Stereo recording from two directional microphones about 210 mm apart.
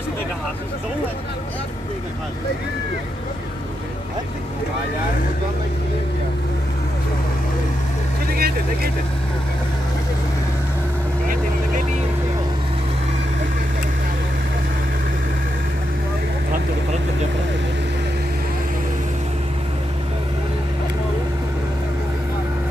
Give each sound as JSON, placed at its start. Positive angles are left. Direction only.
{"t": 8.3, "sound": "vehicle", "side_deg": -45}